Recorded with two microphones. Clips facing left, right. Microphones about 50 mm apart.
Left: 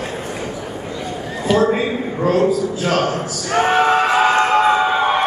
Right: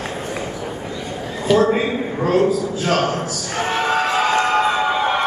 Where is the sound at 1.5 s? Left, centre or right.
Centre.